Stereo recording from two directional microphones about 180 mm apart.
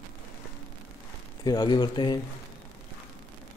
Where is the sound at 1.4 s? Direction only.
25° left (ahead or behind).